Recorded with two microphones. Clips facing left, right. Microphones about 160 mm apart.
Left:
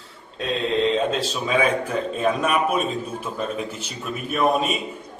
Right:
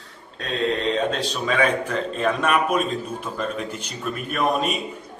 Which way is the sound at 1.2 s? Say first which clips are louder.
Even; 10° left (ahead or behind).